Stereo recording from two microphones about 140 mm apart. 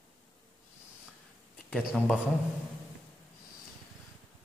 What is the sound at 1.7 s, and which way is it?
Speech, 10° left (ahead or behind).